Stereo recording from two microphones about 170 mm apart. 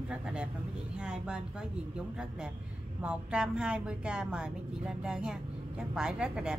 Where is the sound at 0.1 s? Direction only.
5° right (ahead or behind).